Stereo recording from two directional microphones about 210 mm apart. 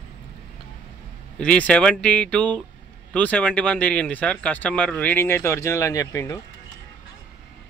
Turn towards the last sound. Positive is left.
turn(degrees=15)  # may be behind; listen again after turning